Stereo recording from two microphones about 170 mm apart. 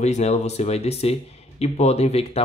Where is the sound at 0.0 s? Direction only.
40° left (ahead or behind).